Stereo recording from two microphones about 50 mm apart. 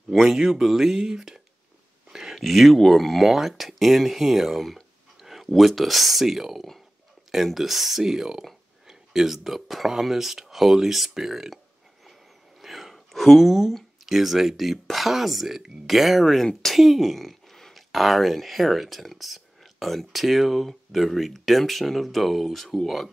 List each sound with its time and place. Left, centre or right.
0.2 s speech: centre
2.1 s a sound: centre
2.4 s speech: centre
5.2 s a sound: centre
5.5 s speech: centre
12.6 s speech: centre